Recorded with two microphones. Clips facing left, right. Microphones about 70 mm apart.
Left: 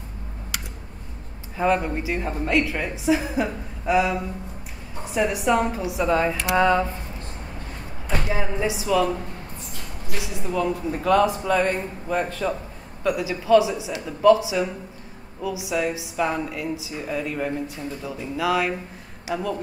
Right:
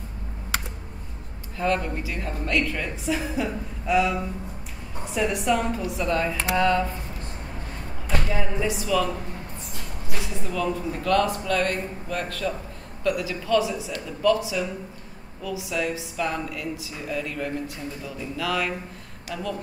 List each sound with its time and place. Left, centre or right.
1.6 s a man's voice: centre
8.3 s a man's voice: centre
10.2 s a man's voice: centre